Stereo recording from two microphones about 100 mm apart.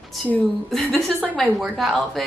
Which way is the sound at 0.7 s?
Centre (ahead or behind).